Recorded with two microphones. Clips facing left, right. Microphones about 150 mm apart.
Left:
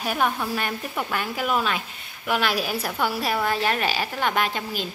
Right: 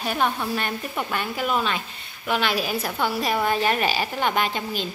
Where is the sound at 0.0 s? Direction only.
5° left (ahead or behind).